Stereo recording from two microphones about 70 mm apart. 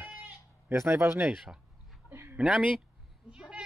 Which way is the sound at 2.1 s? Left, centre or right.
Right.